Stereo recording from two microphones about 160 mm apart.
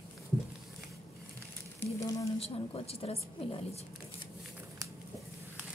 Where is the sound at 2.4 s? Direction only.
40° left (ahead or behind).